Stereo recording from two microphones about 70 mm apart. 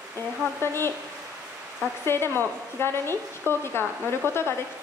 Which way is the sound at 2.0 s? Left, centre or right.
Left.